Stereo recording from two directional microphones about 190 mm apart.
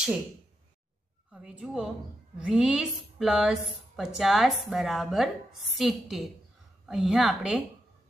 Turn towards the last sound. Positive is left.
turn(degrees=-5)  # may be behind; listen again after turning